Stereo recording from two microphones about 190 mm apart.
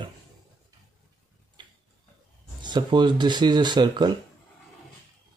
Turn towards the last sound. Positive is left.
turn(degrees=-20)  # may be behind; listen again after turning